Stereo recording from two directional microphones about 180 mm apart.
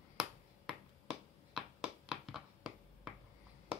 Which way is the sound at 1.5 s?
Centre (ahead or behind).